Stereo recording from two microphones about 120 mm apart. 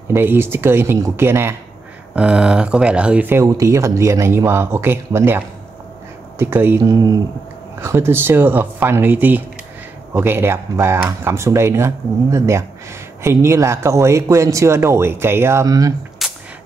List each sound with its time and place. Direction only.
0.1 s speech: 20° right (ahead or behind)
2.1 s speech: 10° right (ahead or behind)
3.4 s speech: 25° right (ahead or behind)
6.8 s speech: 30° right (ahead or behind)
16.2 s music: centre (ahead or behind)